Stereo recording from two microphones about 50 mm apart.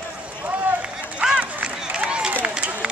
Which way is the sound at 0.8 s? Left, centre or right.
Centre.